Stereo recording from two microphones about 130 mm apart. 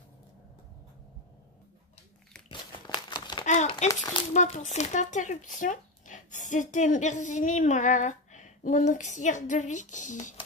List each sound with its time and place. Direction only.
2.5 s crumpling: 35° left (ahead or behind)
3.4 s a sound: 65° left (ahead or behind)
3.9 s speech: 30° left (ahead or behind)
4.3 s speech: 65° left (ahead or behind)